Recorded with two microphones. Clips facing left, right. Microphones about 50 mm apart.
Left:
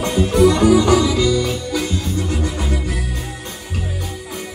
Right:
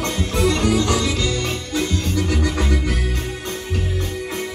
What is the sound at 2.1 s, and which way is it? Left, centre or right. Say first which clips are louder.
Music: right 1 dB; right.